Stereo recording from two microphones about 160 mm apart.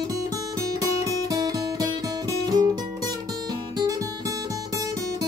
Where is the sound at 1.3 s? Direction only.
25° right (ahead or behind).